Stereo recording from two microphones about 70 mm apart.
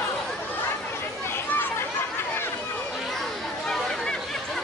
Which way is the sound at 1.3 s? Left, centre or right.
Left.